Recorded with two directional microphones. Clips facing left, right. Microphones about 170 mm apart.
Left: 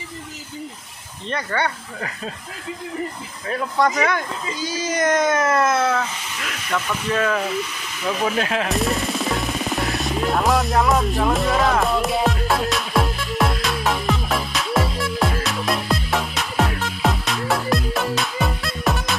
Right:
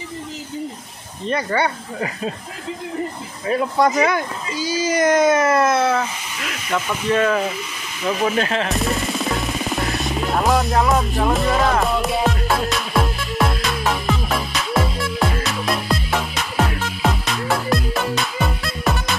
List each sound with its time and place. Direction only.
1.3 s speech: 10° right (ahead or behind)
3.4 s speech: 15° right (ahead or behind)
4.6 s speech: 5° right (ahead or behind)
8.1 s music: centre (ahead or behind)